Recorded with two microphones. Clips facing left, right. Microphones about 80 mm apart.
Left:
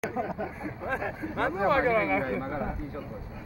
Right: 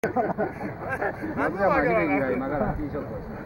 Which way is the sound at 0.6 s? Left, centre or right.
Centre.